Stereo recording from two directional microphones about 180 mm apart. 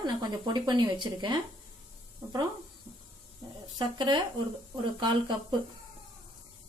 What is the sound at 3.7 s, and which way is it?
Speech, 25° right (ahead or behind).